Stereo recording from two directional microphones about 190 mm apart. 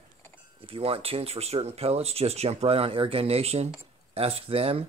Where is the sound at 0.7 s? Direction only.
30° right (ahead or behind).